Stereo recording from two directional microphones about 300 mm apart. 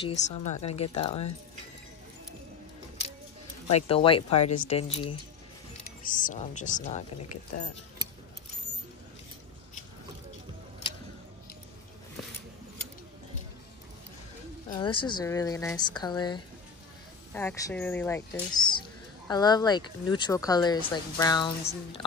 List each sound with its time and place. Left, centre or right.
0.0 s speech: left
3.7 s speech: centre
14.7 s a woman's voice: centre